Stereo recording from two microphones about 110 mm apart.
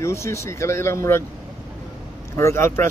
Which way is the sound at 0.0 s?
25° left (ahead or behind).